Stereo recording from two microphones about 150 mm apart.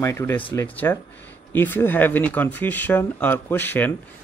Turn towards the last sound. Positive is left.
turn(degrees=15)  # may be behind; listen again after turning